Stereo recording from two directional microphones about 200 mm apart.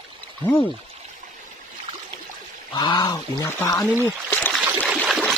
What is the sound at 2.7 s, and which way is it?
Speech, 20° left (ahead or behind).